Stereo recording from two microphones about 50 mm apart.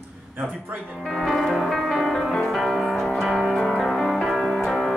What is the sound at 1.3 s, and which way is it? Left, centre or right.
Music, centre.